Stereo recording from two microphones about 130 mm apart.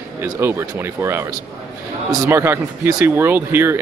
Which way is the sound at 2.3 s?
20° right (ahead or behind).